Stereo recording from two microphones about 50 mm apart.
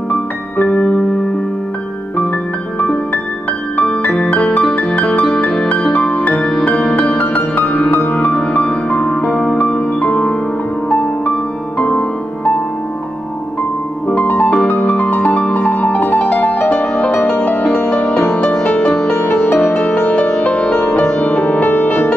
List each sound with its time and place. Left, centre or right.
0.1 s music: left
2.8 s music: left
7.1 s music: left
11.8 s music: left
14.0 s piano: left
14.7 s music: left
17.8 s music: left
19.3 s music: left